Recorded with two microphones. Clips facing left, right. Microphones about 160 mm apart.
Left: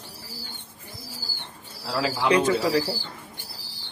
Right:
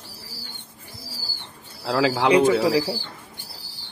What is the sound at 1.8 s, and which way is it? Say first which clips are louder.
Speech: right 6 dB; 90° right.